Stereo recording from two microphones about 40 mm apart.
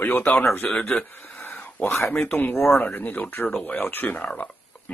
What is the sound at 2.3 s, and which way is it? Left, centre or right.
Speech, left.